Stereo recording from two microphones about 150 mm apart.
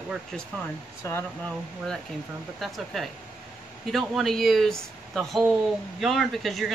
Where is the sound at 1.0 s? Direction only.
20° left (ahead or behind).